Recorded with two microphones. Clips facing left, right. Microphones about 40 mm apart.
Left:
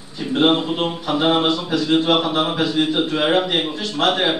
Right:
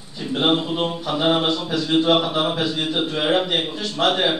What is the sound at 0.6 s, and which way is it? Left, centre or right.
Speech, left.